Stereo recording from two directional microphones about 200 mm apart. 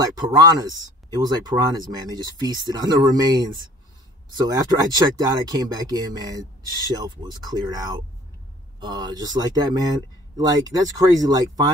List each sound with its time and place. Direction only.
0.0 s speech: 20° right (ahead or behind)
7.4 s speech: 20° right (ahead or behind)